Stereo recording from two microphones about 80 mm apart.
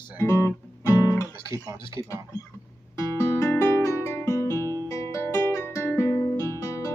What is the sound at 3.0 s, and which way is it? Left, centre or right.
Music, left.